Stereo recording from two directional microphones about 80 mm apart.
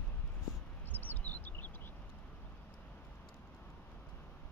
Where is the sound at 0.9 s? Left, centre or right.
Left.